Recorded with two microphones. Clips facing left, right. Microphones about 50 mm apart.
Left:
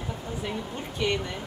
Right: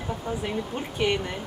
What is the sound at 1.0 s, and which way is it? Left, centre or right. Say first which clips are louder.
Speech: right 2 dB; right.